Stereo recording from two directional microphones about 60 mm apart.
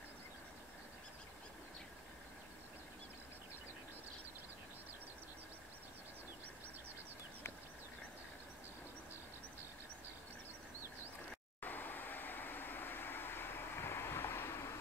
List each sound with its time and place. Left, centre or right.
11.6 s vehicle: left